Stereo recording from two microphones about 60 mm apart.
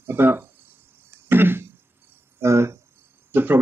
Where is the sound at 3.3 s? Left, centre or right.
Right.